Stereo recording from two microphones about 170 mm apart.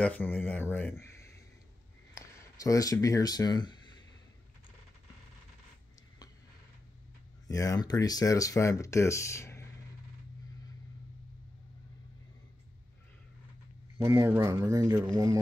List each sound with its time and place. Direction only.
0.0 s speech: 10° left (ahead or behind); by 3.9 s 25° left (ahead or behind)
7.4 s speech: 20° left (ahead or behind)
13.9 s speech: 15° right (ahead or behind)